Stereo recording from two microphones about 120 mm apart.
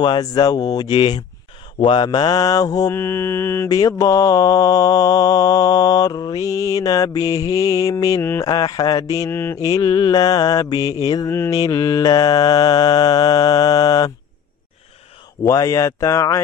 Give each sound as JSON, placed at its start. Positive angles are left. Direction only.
{"t": 0.0, "sound": "mantra", "side_deg": 35}
{"t": 8.2, "sound": "speech", "side_deg": 20}
{"t": 8.5, "sound": "speech", "side_deg": 35}
{"t": 9.7, "sound": "mantra", "side_deg": 35}
{"t": 15.4, "sound": "speech", "side_deg": 30}